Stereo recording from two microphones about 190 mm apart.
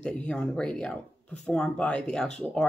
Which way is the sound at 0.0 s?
5° left (ahead or behind).